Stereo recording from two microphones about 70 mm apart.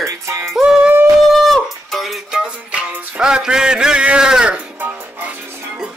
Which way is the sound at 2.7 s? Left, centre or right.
Centre.